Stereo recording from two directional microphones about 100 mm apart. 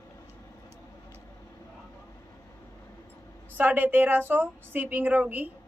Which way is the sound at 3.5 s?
20° right (ahead or behind).